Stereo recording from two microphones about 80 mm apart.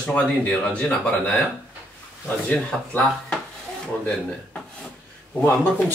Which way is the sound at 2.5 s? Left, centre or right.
Centre.